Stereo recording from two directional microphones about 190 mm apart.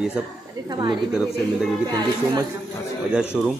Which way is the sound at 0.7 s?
25° right (ahead or behind).